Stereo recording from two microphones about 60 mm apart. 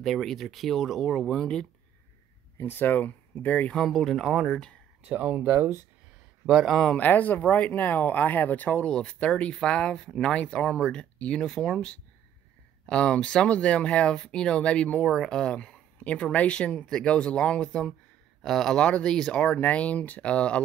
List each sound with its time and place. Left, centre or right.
0.0 s speech: centre
2.5 s speech: left
3.7 s speech: centre
5.0 s speech: right
6.6 s speech: centre
7.0 s speech: left
11.3 s speech: centre
19.4 s speech: left